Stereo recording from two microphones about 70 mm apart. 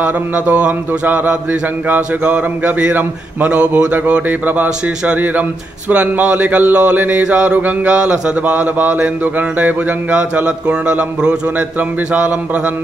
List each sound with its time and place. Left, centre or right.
0.0 s mantra: centre